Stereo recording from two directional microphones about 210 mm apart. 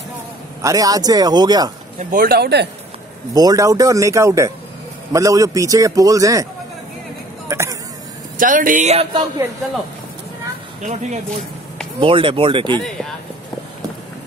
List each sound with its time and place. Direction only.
0.6 s a man's voice: 15° right (ahead or behind)
2.0 s speech: 40° right (ahead or behind)
3.3 s a man's voice: 15° right (ahead or behind)
7.4 s a sound: 15° right (ahead or behind)
8.4 s speech: 40° right (ahead or behind)
10.8 s speech: 35° right (ahead or behind)
12.0 s speech: 25° right (ahead or behind)
12.7 s speech: 5° left (ahead or behind)